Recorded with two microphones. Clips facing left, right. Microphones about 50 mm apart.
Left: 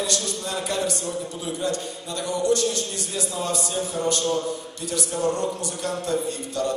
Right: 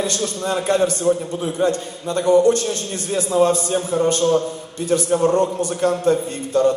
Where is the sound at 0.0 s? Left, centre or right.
Right.